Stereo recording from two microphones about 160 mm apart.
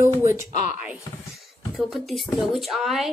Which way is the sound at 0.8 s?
5° right (ahead or behind).